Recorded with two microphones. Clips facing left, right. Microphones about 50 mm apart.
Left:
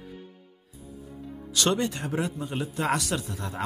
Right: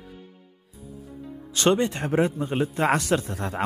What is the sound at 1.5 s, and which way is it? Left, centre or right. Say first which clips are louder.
A man's voice: right 4 dB; right.